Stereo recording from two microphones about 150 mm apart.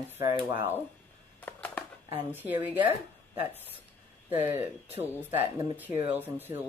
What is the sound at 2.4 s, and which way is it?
Speech, 10° right (ahead or behind).